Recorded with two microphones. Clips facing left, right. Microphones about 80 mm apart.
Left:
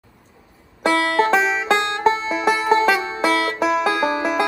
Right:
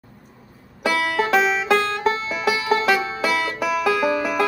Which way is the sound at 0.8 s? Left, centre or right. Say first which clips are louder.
Left 4 dB; left.